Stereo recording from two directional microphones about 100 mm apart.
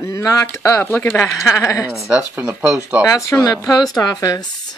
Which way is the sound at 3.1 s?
30° left (ahead or behind).